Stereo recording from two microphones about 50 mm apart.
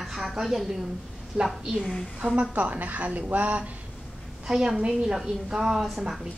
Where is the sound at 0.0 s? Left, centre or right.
Centre.